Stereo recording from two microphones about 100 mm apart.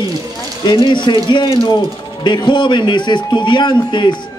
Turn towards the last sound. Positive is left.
turn(degrees=45)  # may be behind; listen again after turning